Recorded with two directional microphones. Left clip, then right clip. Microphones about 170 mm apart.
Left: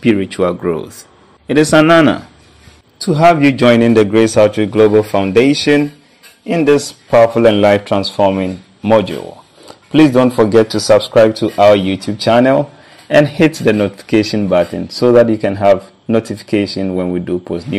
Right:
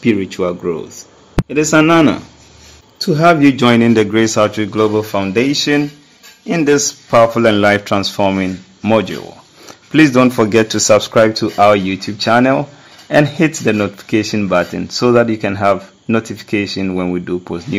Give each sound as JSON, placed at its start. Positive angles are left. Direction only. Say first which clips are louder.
{"t": 0.0, "sound": "speech", "louder": "left 2 dB", "side_deg": 20}